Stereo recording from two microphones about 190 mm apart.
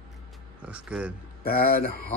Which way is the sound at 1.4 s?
50° left (ahead or behind).